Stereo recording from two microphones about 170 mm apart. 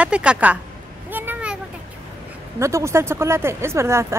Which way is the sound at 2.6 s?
15° right (ahead or behind).